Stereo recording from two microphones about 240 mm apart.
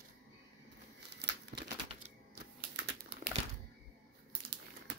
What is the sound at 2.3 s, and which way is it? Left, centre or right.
Typing, right.